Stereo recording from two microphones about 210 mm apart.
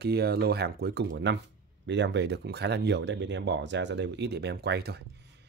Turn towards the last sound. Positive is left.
turn(degrees=-50)  # may be behind; listen again after turning